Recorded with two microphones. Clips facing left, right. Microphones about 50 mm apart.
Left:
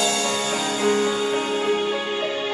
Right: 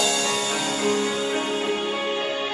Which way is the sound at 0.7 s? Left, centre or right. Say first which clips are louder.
Left 4 dB; left.